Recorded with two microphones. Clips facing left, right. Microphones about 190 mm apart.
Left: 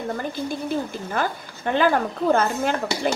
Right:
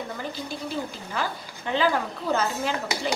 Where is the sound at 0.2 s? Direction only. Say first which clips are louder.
Left 5 dB; 50° left (ahead or behind).